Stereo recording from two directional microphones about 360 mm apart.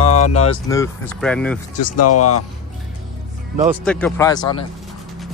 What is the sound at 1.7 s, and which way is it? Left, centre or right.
Speech, left.